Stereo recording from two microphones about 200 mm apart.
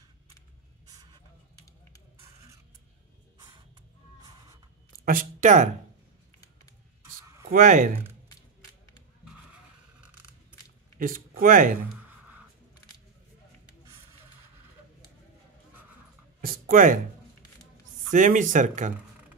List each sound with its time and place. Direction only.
5.0 s speech: 45° right (ahead or behind)
7.4 s speech: 40° right (ahead or behind)
9.2 s vehicle: 5° right (ahead or behind)
11.0 s speech: 45° right (ahead or behind)
16.3 s a sound: 45° right (ahead or behind)
18.1 s speech: 40° right (ahead or behind)